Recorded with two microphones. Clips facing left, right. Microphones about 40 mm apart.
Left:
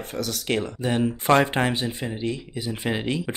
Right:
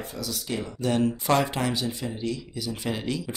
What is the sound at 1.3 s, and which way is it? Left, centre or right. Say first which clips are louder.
Speech: left 7 dB; left.